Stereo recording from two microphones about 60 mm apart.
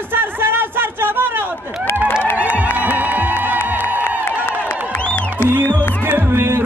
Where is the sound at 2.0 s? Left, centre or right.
Left.